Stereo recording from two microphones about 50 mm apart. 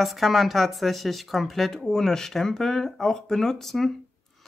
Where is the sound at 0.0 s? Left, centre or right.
Centre.